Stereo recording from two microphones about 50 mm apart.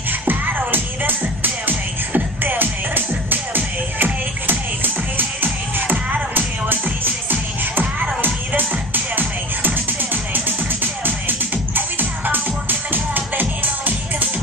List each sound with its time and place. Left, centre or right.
0.2 s music: right
8.2 s music: right